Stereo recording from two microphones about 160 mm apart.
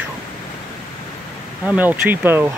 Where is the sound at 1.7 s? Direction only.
10° right (ahead or behind).